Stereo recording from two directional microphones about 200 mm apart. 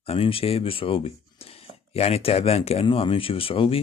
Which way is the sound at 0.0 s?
30° left (ahead or behind).